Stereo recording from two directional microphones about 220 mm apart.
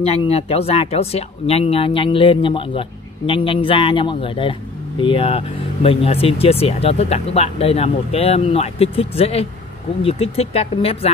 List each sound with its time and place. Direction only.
0.0 s speech: 25° left (ahead or behind)